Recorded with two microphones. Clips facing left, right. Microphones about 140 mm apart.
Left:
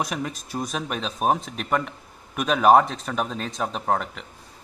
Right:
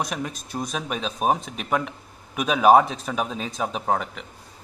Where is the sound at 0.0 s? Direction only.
Centre (ahead or behind).